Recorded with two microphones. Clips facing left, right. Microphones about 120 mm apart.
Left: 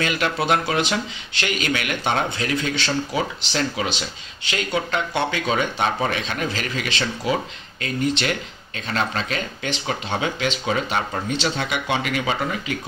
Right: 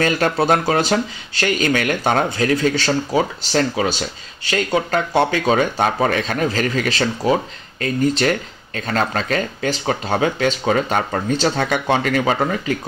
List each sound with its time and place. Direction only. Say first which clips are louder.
0.0 s speech: right 5 dB; 35° right (ahead or behind)